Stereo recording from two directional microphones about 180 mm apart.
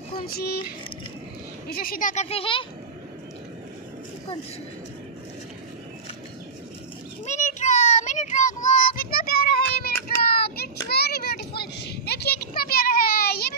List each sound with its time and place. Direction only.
0.3 s speech: 60° left (ahead or behind)
1.7 s speech: 55° left (ahead or behind)
2.2 s speech: 30° left (ahead or behind)
7.2 s child singing: 40° left (ahead or behind); by 10.7 s 60° left (ahead or behind)
10.9 s children playing: 60° left (ahead or behind)